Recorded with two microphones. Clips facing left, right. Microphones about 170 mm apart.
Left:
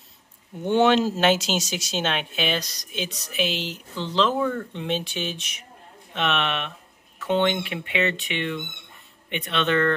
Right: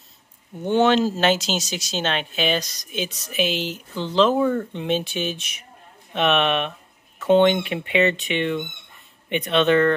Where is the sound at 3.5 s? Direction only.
45° right (ahead or behind).